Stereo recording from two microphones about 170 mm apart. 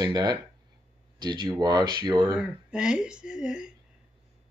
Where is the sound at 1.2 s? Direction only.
25° right (ahead or behind).